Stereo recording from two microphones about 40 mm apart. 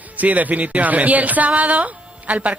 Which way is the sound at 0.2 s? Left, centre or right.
Right.